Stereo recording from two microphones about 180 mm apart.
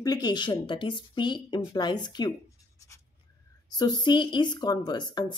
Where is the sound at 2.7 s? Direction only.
15° left (ahead or behind).